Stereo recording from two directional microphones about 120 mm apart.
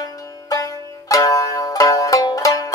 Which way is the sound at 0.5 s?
30° left (ahead or behind).